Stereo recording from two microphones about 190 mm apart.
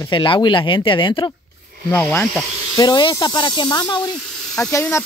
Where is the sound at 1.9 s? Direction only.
10° left (ahead or behind).